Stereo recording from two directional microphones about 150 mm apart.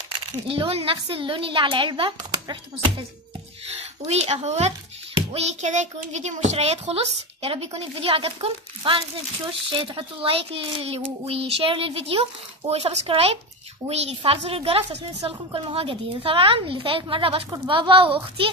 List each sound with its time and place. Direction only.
0.5 s a woman's voice: 40° right (ahead or behind)
4.0 s a child's voice: 45° right (ahead or behind)